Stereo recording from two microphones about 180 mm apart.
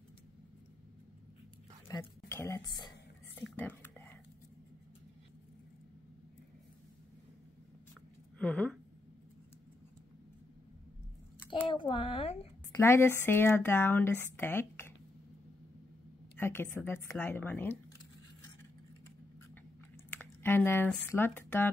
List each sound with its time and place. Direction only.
1.9 s a woman's voice: 15° left (ahead or behind)
3.5 s whispering: 10° left (ahead or behind)
8.4 s speech: 5° left (ahead or behind)
11.6 s a child's voice: 30° left (ahead or behind)
12.7 s speech: 15° left (ahead or behind)
16.3 s a woman's voice: 10° left (ahead or behind)
20.1 s speech: 10° left (ahead or behind)